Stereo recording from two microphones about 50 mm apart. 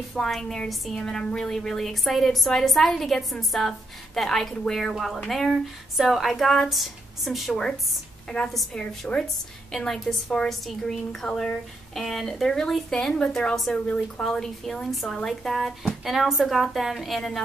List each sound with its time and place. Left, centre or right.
0.1 s a woman's voice: centre
5.5 s a woman's voice: centre
8.7 s speech: centre
12.9 s speech: centre
13.7 s speech: left
14.2 s a woman's voice: centre